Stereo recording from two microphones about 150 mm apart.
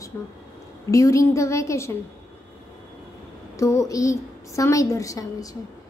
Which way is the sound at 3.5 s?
20° left (ahead or behind).